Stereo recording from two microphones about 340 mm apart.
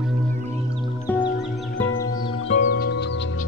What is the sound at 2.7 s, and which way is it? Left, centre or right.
Music, left.